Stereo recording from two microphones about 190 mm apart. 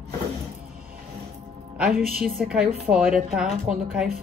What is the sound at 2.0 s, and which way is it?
Speech, 50° right (ahead or behind).